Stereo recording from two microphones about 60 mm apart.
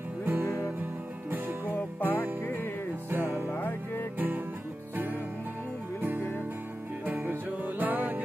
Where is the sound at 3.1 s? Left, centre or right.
Right.